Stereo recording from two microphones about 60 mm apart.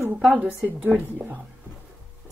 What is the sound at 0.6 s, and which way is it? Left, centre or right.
Speech, right.